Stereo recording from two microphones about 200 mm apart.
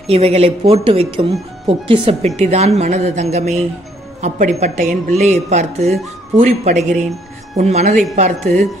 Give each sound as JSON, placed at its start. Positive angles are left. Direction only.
{"t": 0.0, "sound": "a woman's voice", "side_deg": -30}